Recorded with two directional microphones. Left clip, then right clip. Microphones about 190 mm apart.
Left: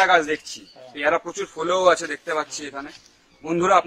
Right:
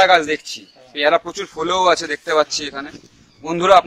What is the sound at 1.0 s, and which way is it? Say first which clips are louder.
A man's voice: right 5 dB; 50° right (ahead or behind).